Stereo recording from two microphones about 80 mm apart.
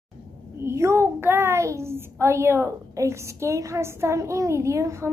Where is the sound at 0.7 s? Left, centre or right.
Right.